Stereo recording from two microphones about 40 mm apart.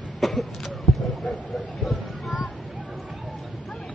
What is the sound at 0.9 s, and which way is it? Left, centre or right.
Basketball bounce, centre.